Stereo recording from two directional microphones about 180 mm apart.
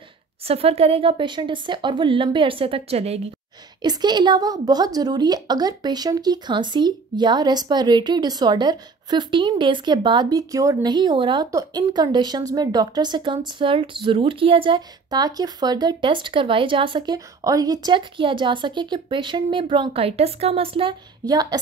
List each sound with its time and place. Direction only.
0.5 s a woman's voice: 35° right (ahead or behind)
3.8 s a woman's voice: 25° right (ahead or behind)